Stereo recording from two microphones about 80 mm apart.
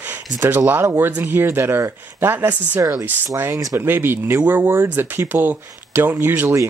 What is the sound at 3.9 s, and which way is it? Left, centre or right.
Speech, right.